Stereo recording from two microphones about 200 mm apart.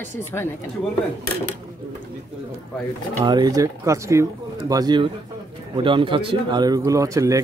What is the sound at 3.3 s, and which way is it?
A man's voice, 20° right (ahead or behind).